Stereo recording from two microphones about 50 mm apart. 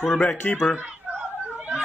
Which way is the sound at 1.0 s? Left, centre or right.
Centre.